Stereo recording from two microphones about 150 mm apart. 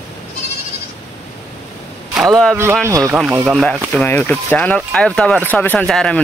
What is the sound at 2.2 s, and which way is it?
Speech, 5° left (ahead or behind).